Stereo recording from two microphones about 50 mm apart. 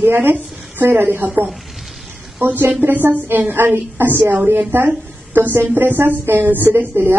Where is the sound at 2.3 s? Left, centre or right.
Right.